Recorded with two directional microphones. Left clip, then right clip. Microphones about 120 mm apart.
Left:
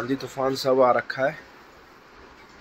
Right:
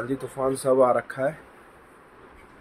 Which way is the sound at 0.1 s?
15° right (ahead or behind).